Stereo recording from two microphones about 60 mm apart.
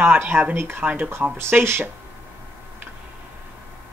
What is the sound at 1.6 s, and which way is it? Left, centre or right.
Speech, right.